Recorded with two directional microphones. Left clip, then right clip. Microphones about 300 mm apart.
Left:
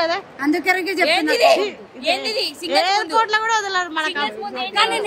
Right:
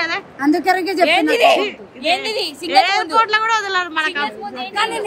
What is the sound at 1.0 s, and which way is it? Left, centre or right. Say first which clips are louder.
Speech: right 3 dB; right.